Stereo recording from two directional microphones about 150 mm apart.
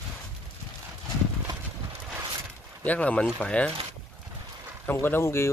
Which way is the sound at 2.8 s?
10° left (ahead or behind).